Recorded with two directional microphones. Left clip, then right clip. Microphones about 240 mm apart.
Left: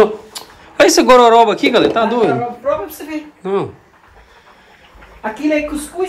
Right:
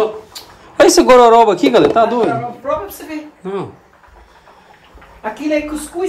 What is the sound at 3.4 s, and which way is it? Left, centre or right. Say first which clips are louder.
Speech: left 5 dB; centre.